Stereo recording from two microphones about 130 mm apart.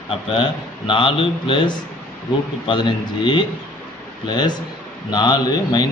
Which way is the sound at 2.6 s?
40° left (ahead or behind).